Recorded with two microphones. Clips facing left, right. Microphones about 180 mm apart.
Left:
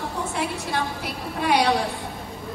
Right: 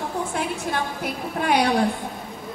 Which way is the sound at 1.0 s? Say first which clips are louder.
Right 2 dB; 50° right (ahead or behind).